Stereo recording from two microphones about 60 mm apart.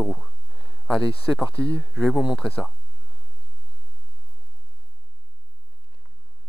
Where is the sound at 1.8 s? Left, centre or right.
Centre.